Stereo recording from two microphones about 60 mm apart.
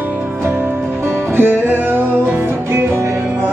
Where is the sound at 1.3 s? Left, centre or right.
Right.